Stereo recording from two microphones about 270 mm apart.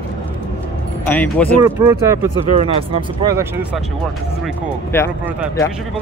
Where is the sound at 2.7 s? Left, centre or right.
Centre.